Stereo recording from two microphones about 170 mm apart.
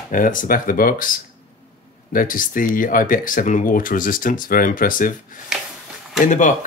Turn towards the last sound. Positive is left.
turn(degrees=45)  # may be behind; listen again after turning